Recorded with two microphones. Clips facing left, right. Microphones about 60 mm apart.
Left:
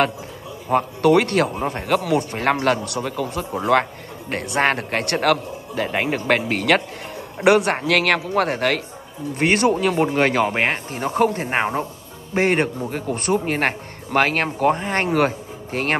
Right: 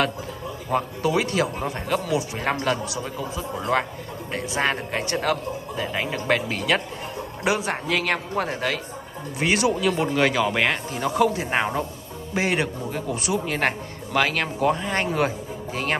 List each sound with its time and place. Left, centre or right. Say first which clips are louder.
1.0 s a man's voice: left 8 dB; left
5.9 s a man's voice: left 3 dB; left
10.1 s a man's voice: left 2 dB; left
11.5 s speech: left 2 dB; left
12.4 s a man's voice: left 5 dB; left
15.0 s speech: left 4 dB; left